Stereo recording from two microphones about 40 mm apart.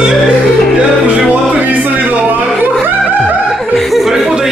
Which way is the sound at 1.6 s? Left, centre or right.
Right.